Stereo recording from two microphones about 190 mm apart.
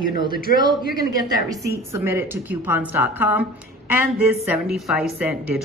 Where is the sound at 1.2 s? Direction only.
20° right (ahead or behind).